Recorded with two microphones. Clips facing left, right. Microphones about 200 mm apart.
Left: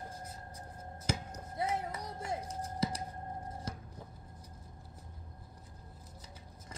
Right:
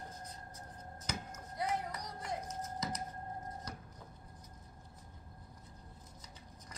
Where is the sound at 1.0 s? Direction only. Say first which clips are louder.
Left 6 dB; 25° left (ahead or behind).